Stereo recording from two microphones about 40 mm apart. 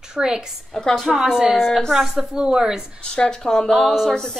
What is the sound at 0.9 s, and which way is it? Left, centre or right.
A woman's voice, centre.